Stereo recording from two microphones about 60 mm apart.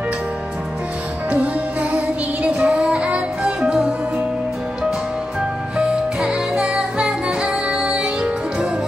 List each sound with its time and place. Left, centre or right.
1.3 s music: right
5.8 s music: centre